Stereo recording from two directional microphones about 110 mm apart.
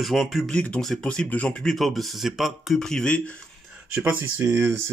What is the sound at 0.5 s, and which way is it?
Speech, 10° left (ahead or behind).